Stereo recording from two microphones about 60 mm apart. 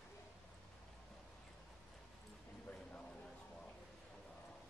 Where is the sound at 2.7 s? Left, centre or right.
Centre.